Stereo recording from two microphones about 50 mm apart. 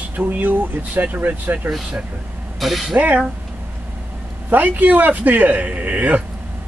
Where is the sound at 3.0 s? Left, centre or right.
Right.